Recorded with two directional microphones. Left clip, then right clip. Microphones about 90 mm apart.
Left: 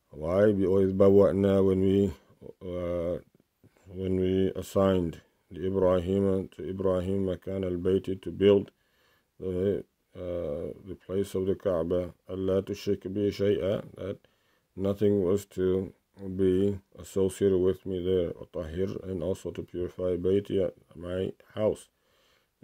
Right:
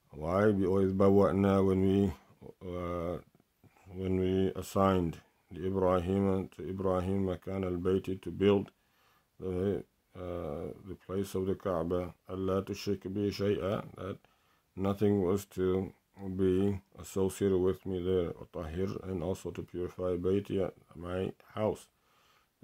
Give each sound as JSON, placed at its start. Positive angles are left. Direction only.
{"t": 0.2, "sound": "speech", "side_deg": 25}
{"t": 15.8, "sound": "speech", "side_deg": 0}
{"t": 16.3, "sound": "speech", "side_deg": 25}